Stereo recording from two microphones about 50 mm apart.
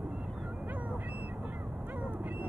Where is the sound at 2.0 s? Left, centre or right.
Right.